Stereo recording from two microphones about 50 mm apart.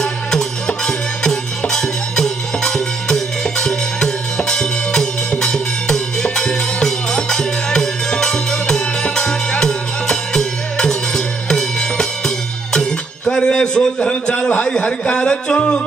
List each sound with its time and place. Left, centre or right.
0.0 s music: centre
13.2 s a sound: centre
14.7 s speech: left